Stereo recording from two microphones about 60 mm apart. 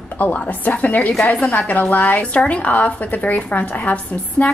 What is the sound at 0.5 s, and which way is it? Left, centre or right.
A woman's voice, left.